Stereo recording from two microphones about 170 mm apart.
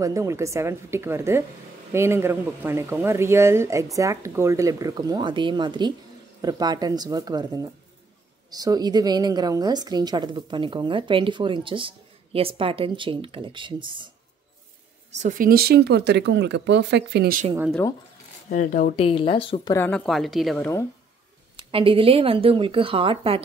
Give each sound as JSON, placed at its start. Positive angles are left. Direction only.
{"t": 0.0, "sound": "a woman's voice", "side_deg": -20}
{"t": 15.1, "sound": "speech", "side_deg": -50}
{"t": 18.5, "sound": "speech", "side_deg": 55}
{"t": 18.9, "sound": "speech", "side_deg": 35}
{"t": 19.7, "sound": "a woman's voice", "side_deg": 10}
{"t": 21.6, "sound": "speech", "side_deg": -30}